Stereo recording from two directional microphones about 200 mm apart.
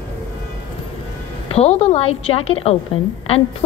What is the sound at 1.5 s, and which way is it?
A woman's voice, 30° left (ahead or behind).